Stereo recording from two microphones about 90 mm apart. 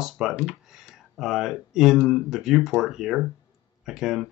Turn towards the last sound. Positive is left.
turn(degrees=-5)  # may be behind; listen again after turning